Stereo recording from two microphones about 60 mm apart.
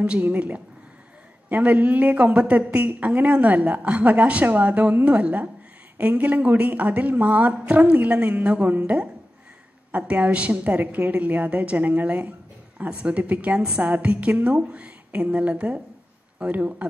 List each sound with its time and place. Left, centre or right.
0.0 s a woman's voice: right
10.8 s a woman's voice: right
13.6 s a woman's voice: centre
13.8 s a woman's voice: right